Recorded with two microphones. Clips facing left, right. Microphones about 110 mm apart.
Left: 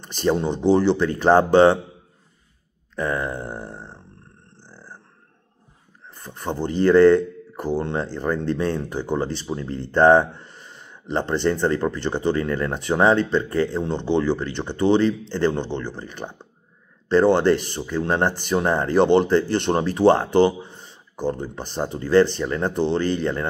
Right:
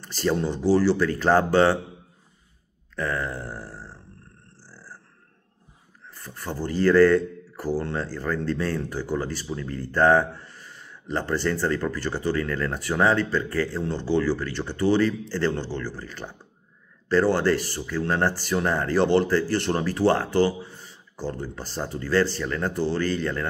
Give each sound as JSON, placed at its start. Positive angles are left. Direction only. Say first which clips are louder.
{"t": 0.0, "sound": "speech", "louder": "left 3 dB", "side_deg": 20}
{"t": 3.0, "sound": "grunt", "louder": "left 3 dB", "side_deg": 20}
{"t": 6.0, "sound": "speech", "louder": "left 5 dB", "side_deg": 20}